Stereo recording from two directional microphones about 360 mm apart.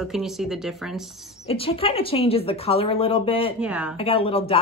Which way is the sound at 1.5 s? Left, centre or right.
Centre.